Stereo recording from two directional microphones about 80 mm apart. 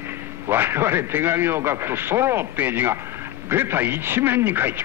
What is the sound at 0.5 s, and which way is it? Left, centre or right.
Speech, right.